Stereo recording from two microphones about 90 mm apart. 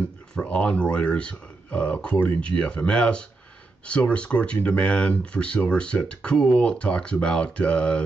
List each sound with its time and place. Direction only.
0.3 s speech: 10° left (ahead or behind)